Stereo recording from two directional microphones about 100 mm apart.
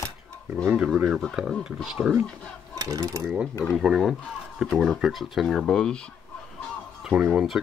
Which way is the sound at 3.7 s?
5° right (ahead or behind).